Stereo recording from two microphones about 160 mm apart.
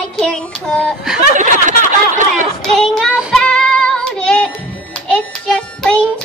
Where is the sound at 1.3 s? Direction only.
55° right (ahead or behind).